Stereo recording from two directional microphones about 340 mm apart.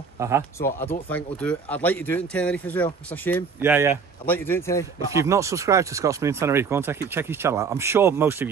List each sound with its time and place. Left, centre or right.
0.2 s speech: centre
0.6 s speech: centre
3.6 s speech: centre
4.3 s a man's voice: centre
5.1 s speech: centre